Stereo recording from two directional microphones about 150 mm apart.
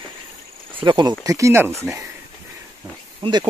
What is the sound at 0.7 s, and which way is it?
Speech, 30° right (ahead or behind).